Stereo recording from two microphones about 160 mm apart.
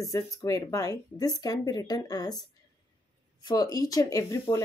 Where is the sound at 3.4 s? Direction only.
25° left (ahead or behind).